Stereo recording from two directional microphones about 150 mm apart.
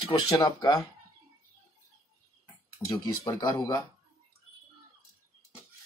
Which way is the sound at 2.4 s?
25° left (ahead or behind).